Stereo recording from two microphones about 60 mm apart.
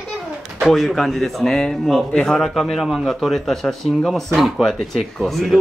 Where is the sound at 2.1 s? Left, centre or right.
Centre.